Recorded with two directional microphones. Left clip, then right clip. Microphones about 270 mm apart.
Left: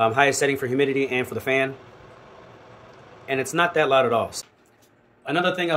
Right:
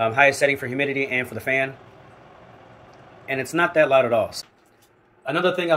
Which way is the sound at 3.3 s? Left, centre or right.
Centre.